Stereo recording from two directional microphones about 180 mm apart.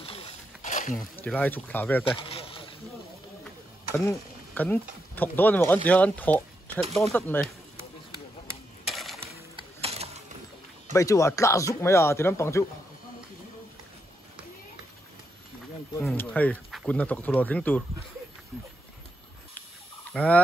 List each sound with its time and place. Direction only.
0.0 s a sound: 30° left (ahead or behind)
1.1 s speech: 10° left (ahead or behind)
2.0 s a sound: 30° left (ahead or behind)
3.9 s speech: 15° left (ahead or behind)
8.8 s coin: centre (ahead or behind)
9.6 s music: 35° right (ahead or behind)
10.9 s speech: 15° left (ahead or behind)
16.1 s speech: 10° left (ahead or behind)
20.1 s fowl: 5° left (ahead or behind)